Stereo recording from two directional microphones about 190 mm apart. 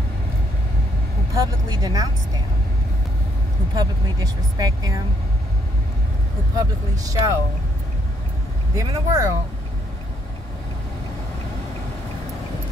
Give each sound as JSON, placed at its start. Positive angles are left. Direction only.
{"t": 1.3, "sound": "speech", "side_deg": -20}
{"t": 3.7, "sound": "speech", "side_deg": -20}
{"t": 6.5, "sound": "speech", "side_deg": -20}
{"t": 8.7, "sound": "speech", "side_deg": -15}